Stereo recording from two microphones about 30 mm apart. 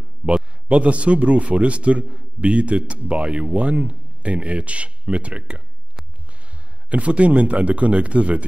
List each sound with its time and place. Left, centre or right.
0.2 s a man's voice: right
6.9 s a man's voice: right